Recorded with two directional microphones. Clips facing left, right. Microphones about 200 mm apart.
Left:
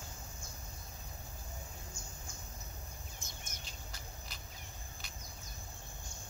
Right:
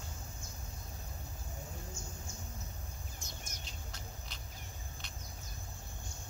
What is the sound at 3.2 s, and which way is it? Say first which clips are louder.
Bird: right 2 dB; 50° left (ahead or behind).